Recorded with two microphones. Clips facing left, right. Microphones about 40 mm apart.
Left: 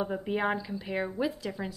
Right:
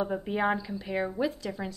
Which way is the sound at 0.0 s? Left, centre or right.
Centre.